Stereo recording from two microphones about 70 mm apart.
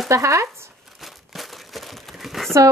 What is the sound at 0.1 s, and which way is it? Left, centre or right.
Speech, right.